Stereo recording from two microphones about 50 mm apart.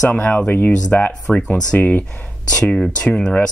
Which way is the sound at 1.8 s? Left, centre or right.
Left.